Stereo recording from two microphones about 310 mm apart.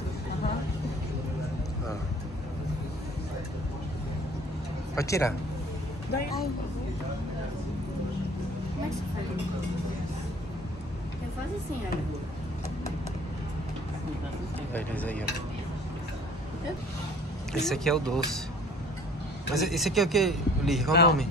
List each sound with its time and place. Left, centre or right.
4.9 s speech: centre
14.7 s speech: centre
17.5 s speech: centre
19.5 s speech: centre
20.9 s a man's voice: left